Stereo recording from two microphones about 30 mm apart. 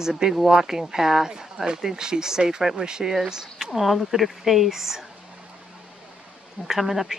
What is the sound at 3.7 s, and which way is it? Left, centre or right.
Speech, centre.